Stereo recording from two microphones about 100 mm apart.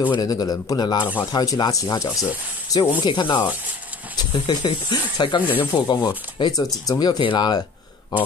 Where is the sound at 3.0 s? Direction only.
50° left (ahead or behind).